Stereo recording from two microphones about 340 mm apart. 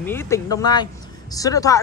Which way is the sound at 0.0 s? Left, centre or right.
Centre.